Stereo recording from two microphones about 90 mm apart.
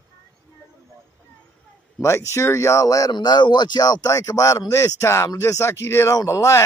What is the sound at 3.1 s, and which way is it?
Speech, 55° left (ahead or behind).